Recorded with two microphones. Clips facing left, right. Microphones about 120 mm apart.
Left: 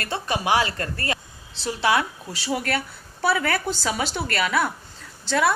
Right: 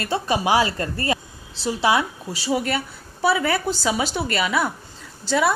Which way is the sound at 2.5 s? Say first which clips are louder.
Right 2 dB; 15° right (ahead or behind).